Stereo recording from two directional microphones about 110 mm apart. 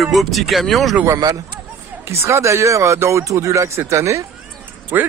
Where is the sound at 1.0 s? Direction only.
35° right (ahead or behind).